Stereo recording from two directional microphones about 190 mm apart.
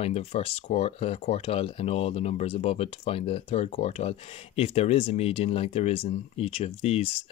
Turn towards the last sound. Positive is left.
turn(degrees=30)  # may be behind; listen again after turning